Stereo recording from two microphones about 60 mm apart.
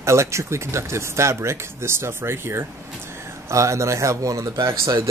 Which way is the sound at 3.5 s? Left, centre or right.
Right.